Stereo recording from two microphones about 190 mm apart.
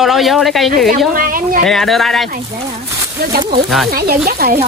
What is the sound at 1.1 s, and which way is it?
Speech, 45° right (ahead or behind).